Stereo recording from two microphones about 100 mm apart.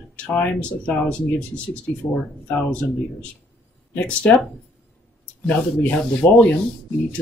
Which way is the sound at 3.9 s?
10° left (ahead or behind).